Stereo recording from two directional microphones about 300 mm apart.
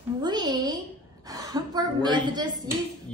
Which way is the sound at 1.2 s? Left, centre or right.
Centre.